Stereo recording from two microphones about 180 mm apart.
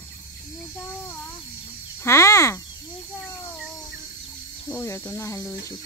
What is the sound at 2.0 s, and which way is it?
Speech, 15° left (ahead or behind).